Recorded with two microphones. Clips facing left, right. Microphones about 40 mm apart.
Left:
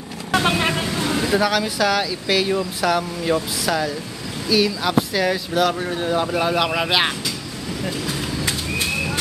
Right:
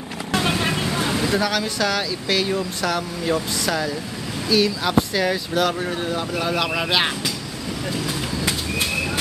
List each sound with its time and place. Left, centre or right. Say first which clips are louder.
0.3 s vehicle: left 3 dB; left
1.3 s speech: left 2 dB; centre
6.0 s speech: left 7 dB; centre